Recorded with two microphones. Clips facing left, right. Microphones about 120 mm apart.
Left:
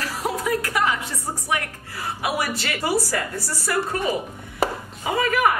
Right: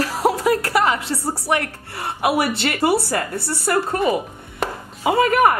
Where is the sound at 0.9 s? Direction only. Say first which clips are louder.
Right 6 dB; 30° right (ahead or behind).